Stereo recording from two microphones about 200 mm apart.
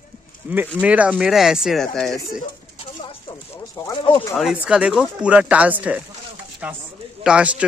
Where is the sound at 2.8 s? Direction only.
30° left (ahead or behind).